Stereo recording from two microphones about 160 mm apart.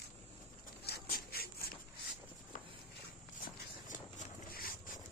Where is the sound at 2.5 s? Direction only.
55° left (ahead or behind).